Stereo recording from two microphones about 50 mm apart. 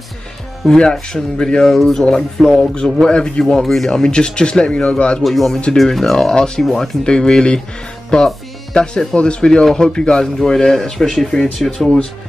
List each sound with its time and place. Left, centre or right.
0.7 s speech: centre
2.7 s speech: centre
3.6 s speech: centre
3.9 s speech: centre
5.2 s speech: centre
6.1 s speech: centre
6.6 s speech: centre
7.1 s speech: centre